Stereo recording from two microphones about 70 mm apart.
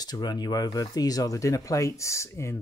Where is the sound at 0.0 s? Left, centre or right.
Left.